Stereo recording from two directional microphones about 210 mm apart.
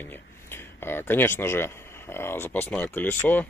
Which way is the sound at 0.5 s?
10° left (ahead or behind).